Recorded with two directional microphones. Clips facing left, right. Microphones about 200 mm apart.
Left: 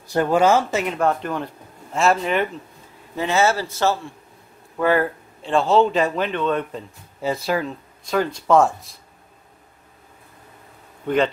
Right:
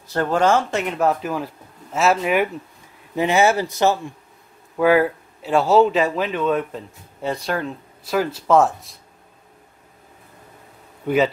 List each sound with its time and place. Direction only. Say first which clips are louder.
0.1 s speech: left 1 dB; 10° left (ahead or behind)